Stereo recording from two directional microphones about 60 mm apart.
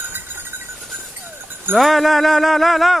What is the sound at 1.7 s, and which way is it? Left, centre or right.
Speech, centre.